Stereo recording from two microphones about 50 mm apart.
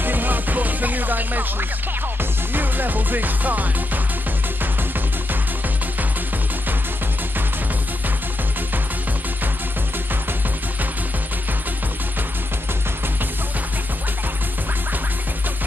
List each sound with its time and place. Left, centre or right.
0.0 s music: right